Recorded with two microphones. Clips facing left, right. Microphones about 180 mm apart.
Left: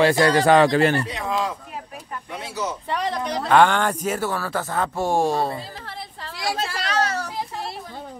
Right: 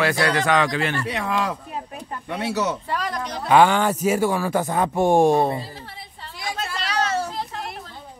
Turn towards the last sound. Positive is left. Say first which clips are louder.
# right 2 dB
turn(degrees=-25)  # may be behind; listen again after turning